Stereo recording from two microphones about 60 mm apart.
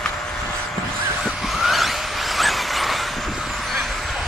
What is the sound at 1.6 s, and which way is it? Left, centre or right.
Vehicle, centre.